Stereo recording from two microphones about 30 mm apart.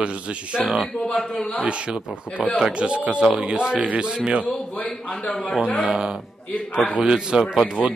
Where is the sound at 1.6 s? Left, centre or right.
Right.